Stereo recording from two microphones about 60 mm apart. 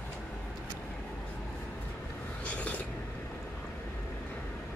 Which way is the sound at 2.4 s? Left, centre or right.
Left.